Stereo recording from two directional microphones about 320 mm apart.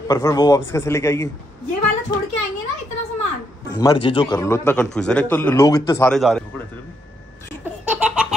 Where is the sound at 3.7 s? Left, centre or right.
Centre.